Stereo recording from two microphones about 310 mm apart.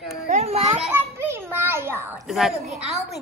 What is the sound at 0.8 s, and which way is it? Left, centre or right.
Children playing, centre.